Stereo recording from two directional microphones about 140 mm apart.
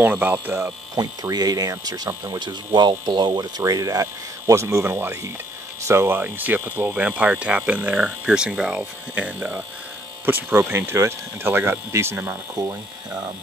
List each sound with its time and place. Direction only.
0.0 s speech: 15° right (ahead or behind)
0.9 s speech: 25° right (ahead or behind)